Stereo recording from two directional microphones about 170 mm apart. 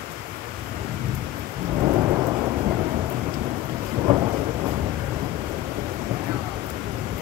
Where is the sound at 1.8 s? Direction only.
25° right (ahead or behind).